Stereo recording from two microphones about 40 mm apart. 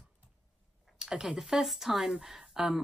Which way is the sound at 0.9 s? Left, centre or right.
Centre.